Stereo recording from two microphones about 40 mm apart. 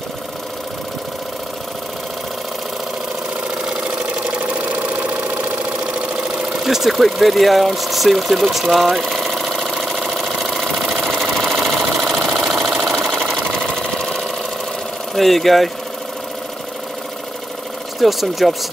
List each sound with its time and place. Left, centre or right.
4.0 s engine: right
6.2 s engine: centre
6.6 s speech: centre
9.1 s engine: centre
13.3 s sewing machine: centre
15.1 s speech: centre
18.0 s speech: centre